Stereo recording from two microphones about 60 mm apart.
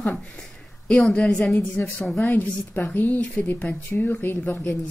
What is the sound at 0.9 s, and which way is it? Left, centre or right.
Speech, centre.